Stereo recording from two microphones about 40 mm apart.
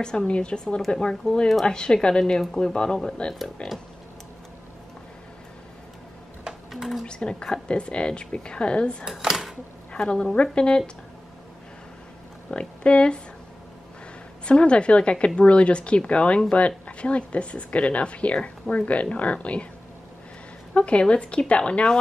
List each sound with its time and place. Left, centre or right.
0.3 s a woman's voice: left
6.7 s a sound: centre
7.5 s a woman's voice: left
9.2 s a sound: centre
9.9 s a woman's voice: left
12.4 s speech: left
14.4 s a woman's voice: left
20.7 s a woman's voice: left